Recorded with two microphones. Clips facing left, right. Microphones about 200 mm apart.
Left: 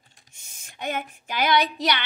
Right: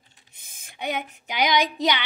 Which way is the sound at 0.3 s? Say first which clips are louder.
Right 1 dB; 55° right (ahead or behind).